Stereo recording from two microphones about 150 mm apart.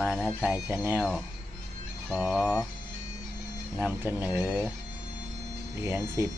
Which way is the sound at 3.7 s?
15° right (ahead or behind).